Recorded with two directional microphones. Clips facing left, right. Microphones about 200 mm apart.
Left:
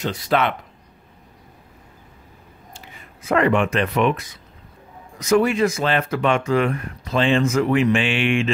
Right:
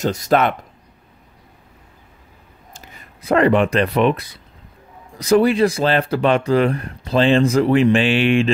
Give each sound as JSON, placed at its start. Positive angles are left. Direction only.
{"t": 0.0, "sound": "speech", "side_deg": -45}
{"t": 2.7, "sound": "speech", "side_deg": -40}